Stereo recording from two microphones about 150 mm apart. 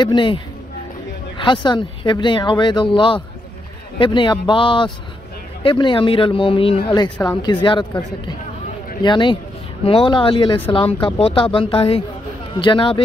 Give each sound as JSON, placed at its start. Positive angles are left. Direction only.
{"t": 0.0, "sound": "speech", "side_deg": 35}
{"t": 1.4, "sound": "speech", "side_deg": 30}
{"t": 9.0, "sound": "speech", "side_deg": 30}